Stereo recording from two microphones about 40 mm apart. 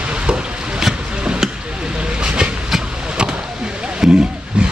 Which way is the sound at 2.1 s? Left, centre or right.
Right.